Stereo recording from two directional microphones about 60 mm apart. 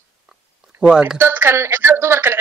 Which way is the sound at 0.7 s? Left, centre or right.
Centre.